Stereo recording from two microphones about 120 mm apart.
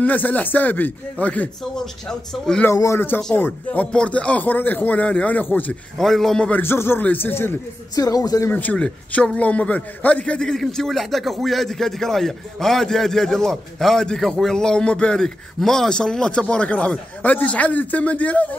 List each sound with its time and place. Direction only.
0.0 s a man's voice: 15° left (ahead or behind)
2.7 s speech: 25° left (ahead or behind)
5.9 s speech: centre (ahead or behind)
7.9 s speech: 30° left (ahead or behind)
8.5 s a man's voice: 15° left (ahead or behind)